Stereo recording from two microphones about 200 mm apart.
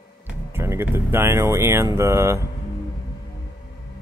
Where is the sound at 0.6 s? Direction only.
10° right (ahead or behind).